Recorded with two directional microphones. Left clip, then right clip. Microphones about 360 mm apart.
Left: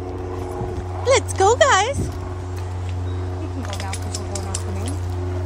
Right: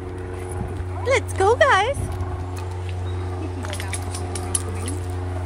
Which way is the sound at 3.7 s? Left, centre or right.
Centre.